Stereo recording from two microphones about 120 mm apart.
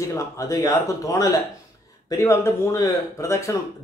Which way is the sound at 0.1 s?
25° left (ahead or behind).